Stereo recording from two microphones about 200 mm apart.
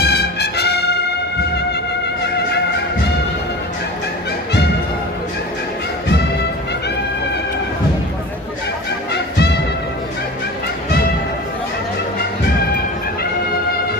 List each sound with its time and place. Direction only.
0.0 s trumpet: 55° left (ahead or behind)
2.2 s music: 55° left (ahead or behind)
9.1 s music: 55° left (ahead or behind)